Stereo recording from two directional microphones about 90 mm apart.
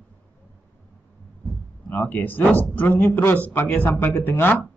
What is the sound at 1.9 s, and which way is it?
Speech, 20° left (ahead or behind).